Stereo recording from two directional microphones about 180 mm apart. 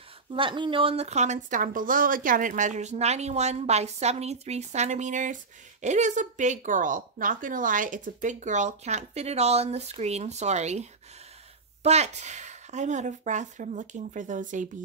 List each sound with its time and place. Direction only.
0.3 s a woman's voice: 30° right (ahead or behind); by 14.7 s 45° right (ahead or behind)